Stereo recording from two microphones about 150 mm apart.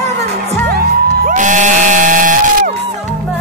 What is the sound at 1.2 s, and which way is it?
Crowd, 60° right (ahead or behind).